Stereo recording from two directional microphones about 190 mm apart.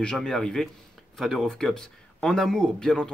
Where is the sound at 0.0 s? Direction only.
5° left (ahead or behind).